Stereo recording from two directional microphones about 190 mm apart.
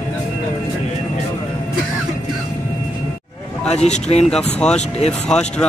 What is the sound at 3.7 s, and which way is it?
Speech, 35° left (ahead or behind).